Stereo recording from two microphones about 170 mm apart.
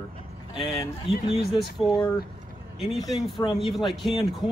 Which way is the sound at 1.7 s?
Centre (ahead or behind).